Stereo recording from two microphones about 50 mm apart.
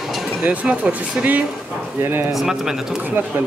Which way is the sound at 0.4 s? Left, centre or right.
Right.